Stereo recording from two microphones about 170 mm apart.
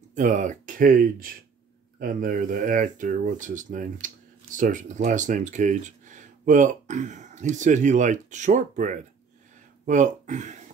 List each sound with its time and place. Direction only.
0.1 s speech: 45° right (ahead or behind)